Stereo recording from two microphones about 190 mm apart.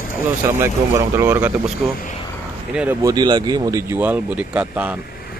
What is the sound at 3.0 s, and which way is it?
Speech, 20° right (ahead or behind).